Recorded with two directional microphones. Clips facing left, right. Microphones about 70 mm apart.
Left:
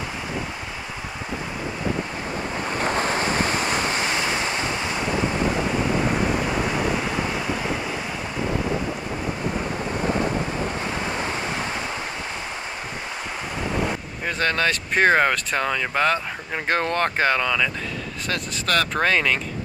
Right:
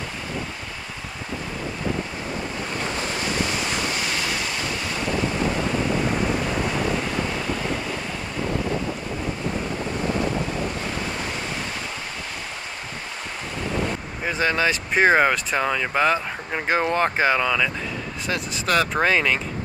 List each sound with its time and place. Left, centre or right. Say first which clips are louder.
2.8 s waves: left 6 dB; left
14.2 s speech: right 1 dB; centre